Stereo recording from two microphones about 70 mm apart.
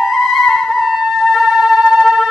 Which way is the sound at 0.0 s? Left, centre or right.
Centre.